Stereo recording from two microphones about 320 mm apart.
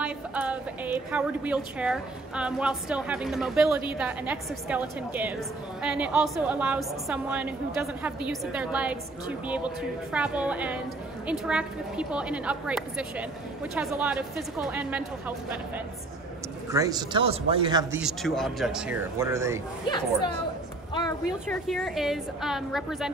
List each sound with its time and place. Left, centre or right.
0.0 s a woman's voice: centre
16.7 s speech: centre
18.0 s a woman's voice: centre
19.9 s speech: centre
21.5 s a woman's voice: centre